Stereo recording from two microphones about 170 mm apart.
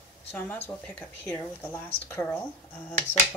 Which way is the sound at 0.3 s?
10° left (ahead or behind).